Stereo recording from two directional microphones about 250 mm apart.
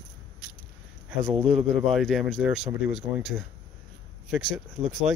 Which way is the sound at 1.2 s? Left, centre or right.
Right.